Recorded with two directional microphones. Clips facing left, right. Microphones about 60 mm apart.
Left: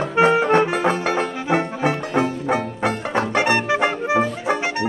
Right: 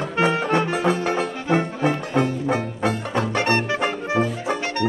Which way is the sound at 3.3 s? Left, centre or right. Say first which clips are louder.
Left 3 dB; centre.